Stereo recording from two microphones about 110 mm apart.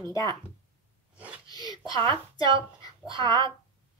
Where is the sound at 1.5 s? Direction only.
35° left (ahead or behind).